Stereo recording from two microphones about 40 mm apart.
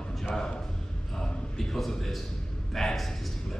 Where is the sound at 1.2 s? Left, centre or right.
Centre.